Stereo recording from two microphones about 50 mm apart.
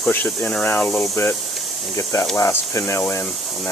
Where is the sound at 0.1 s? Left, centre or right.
Left.